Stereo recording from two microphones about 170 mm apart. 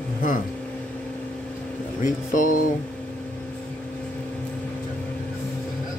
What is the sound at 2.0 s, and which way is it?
Speech, 50° left (ahead or behind).